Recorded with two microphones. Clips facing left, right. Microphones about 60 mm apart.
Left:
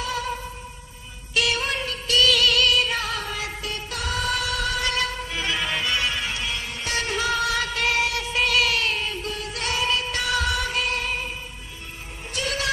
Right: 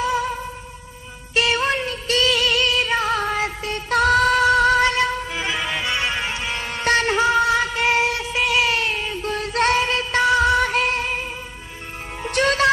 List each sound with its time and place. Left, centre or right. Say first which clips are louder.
1.3 s music: right 5 dB; right
3.9 s music: right 12 dB; right
4.9 s music: right 5 dB; right
6.6 s music: right 9 dB; right
7.2 s music: right 6 dB; right
8.5 s a sound: right 3 dB; right
9.3 s music: right 9 dB; right
12.2 s music: right 10 dB; right